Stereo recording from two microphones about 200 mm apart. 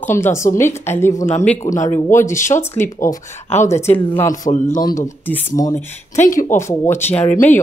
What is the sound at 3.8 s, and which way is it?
Speech, 10° left (ahead or behind).